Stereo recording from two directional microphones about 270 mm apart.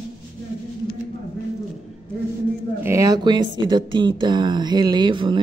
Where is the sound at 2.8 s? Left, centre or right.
Centre.